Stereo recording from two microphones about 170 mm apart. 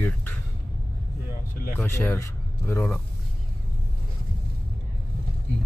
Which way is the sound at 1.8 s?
15° left (ahead or behind).